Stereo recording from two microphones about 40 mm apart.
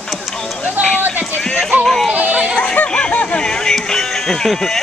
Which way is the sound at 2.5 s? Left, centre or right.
Left.